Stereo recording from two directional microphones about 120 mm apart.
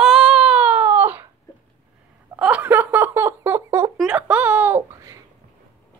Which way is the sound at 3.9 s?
5° right (ahead or behind).